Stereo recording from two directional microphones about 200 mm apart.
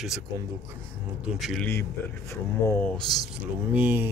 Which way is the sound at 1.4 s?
Centre (ahead or behind).